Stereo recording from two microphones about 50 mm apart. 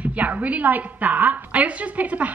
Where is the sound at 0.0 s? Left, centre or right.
Right.